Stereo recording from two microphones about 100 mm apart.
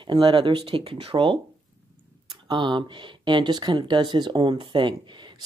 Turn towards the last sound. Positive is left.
turn(degrees=-50)  # may be behind; listen again after turning